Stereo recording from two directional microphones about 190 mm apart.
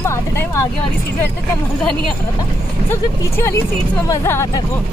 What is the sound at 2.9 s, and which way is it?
Speech, 15° left (ahead or behind).